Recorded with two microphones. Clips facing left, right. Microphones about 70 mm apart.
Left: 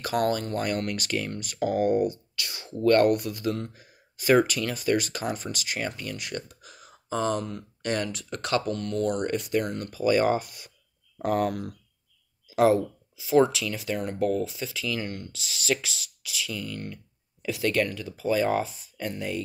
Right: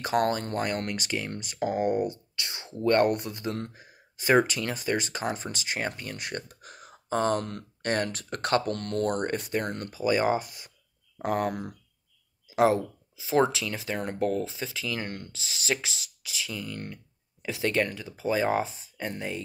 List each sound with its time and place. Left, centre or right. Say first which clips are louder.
0.0 s speech: even; right
7.8 s speech: right 1 dB; right
8.7 s speech: left 1 dB; right
9.2 s speech: left 2 dB; right